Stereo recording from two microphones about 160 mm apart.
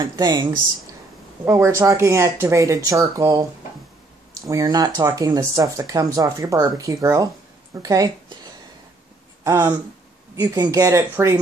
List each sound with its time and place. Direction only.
0.0 s speech: 25° right (ahead or behind)
4.5 s speech: 20° right (ahead or behind)
9.4 s speech: 20° right (ahead or behind)